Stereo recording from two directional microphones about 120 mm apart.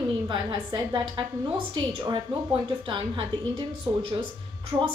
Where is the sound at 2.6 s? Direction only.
40° right (ahead or behind).